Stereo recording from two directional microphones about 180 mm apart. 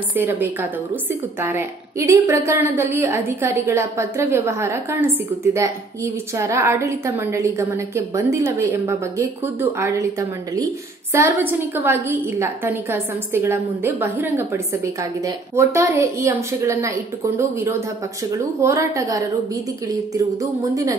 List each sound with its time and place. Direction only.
0.1 s a woman's voice: 10° right (ahead or behind)
11.1 s a woman's voice: 15° right (ahead or behind)